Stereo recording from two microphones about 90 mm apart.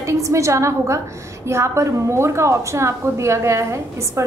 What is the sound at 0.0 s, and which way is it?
A woman's voice, 35° right (ahead or behind).